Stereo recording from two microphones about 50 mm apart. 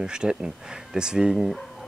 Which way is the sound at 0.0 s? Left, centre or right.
Centre.